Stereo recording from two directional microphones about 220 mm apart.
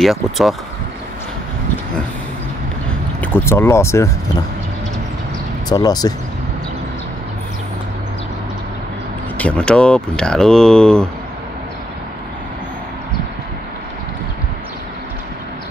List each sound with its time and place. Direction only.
0.0 s speech: centre (ahead or behind)
3.2 s speech: 10° left (ahead or behind)
5.7 s speech: 15° left (ahead or behind)
9.4 s speech: 5° left (ahead or behind)